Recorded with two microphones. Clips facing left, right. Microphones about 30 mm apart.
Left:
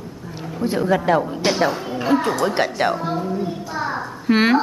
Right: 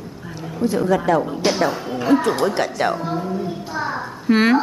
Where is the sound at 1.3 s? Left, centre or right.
Centre.